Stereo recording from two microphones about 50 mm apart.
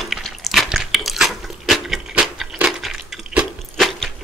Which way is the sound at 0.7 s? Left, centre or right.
Centre.